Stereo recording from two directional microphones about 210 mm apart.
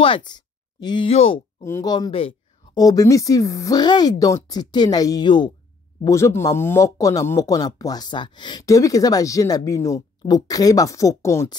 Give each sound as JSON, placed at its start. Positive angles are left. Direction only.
{"t": 0.0, "sound": "speech", "side_deg": 20}
{"t": 1.6, "sound": "speech", "side_deg": 15}